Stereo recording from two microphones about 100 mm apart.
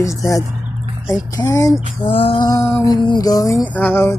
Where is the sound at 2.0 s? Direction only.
65° left (ahead or behind).